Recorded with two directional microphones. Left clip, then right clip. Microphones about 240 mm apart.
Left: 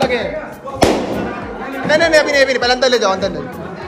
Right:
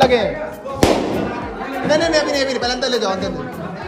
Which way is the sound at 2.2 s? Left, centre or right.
Centre.